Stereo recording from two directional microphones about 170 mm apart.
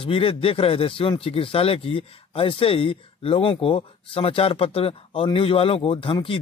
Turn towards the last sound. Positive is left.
turn(degrees=30)  # may be behind; listen again after turning